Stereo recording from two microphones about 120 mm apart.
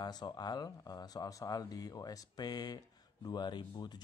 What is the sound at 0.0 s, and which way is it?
Speech, 35° left (ahead or behind).